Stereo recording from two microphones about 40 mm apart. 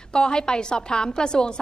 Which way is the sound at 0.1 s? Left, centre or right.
Centre.